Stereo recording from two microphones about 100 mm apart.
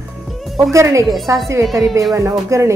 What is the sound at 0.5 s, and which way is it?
Speech, 30° right (ahead or behind).